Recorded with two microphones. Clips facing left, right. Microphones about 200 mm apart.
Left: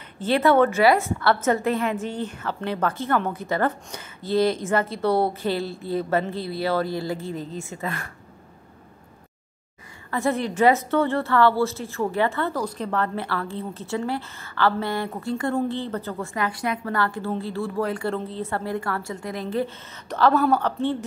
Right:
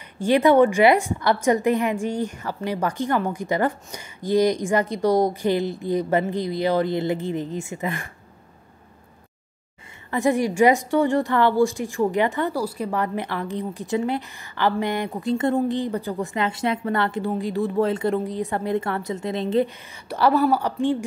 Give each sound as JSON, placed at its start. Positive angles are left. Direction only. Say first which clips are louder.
{"t": 0.2, "sound": "a woman's voice", "louder": "right 3 dB", "side_deg": -15}
{"t": 10.1, "sound": "a woman's voice", "louder": "right 3 dB", "side_deg": -15}
{"t": 20.1, "sound": "a woman's voice", "louder": "even", "side_deg": -10}